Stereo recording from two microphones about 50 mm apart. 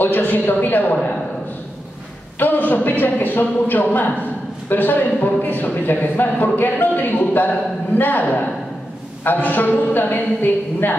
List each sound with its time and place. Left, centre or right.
0.0 s a man's voice: left
2.3 s a man's voice: left